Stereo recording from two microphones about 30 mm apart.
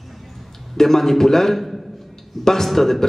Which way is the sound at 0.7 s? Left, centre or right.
Centre.